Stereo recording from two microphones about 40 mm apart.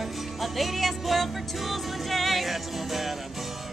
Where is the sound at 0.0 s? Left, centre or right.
Centre.